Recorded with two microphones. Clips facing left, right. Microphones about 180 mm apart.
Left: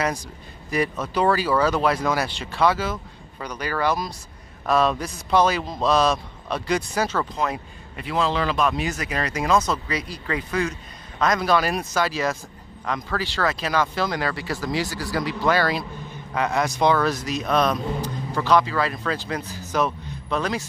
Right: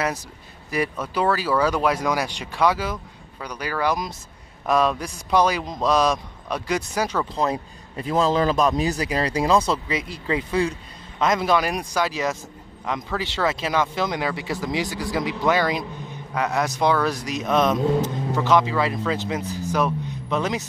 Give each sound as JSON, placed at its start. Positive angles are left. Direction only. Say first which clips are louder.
{"t": 0.7, "sound": "speech", "louder": "left 1 dB", "side_deg": -10}
{"t": 7.3, "sound": "a man's voice", "louder": "right 3 dB", "side_deg": -30}
{"t": 16.3, "sound": "speech", "louder": "left 1 dB", "side_deg": -5}